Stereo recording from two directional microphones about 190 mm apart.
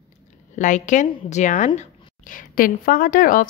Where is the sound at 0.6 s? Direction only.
40° left (ahead or behind).